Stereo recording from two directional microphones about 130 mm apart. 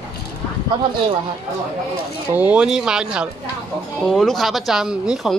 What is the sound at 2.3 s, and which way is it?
Speech, 10° right (ahead or behind).